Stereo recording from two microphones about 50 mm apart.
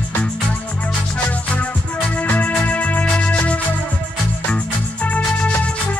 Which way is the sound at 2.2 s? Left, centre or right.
Left.